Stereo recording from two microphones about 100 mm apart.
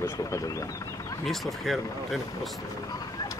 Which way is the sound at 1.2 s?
Centre (ahead or behind).